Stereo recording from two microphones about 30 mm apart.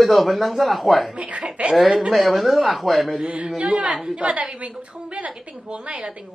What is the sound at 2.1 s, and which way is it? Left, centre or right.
A man's voice, centre.